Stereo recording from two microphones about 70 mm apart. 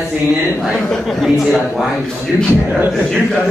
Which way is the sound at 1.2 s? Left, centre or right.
Centre.